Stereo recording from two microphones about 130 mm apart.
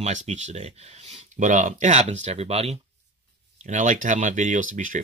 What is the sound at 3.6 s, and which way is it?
Speech, 70° right (ahead or behind).